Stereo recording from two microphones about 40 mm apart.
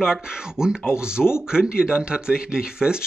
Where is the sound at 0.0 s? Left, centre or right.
Centre.